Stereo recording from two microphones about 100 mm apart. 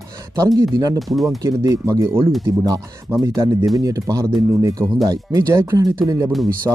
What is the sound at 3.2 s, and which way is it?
Speech, 30° right (ahead or behind).